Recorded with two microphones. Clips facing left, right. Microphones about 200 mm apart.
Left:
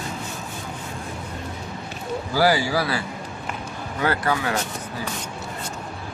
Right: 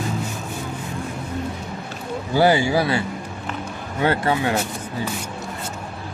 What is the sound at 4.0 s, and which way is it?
Speech, 25° right (ahead or behind).